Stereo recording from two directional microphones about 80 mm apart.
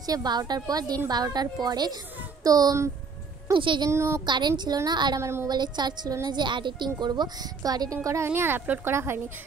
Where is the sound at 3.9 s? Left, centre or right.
Right.